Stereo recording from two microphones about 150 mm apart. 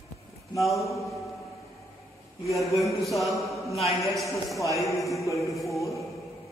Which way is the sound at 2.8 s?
Centre (ahead or behind).